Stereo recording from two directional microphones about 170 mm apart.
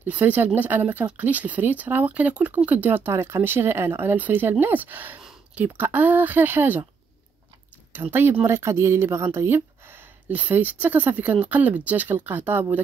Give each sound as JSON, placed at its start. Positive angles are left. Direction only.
{"t": 0.0, "sound": "speech", "side_deg": -10}
{"t": 7.9, "sound": "speech", "side_deg": -10}